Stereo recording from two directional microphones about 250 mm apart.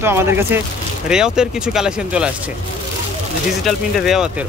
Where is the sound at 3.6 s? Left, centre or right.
Centre.